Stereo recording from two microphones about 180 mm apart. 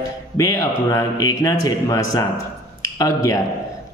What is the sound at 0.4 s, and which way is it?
A man's voice, 15° left (ahead or behind).